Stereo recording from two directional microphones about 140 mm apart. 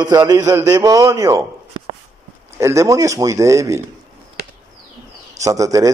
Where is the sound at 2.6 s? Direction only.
20° right (ahead or behind).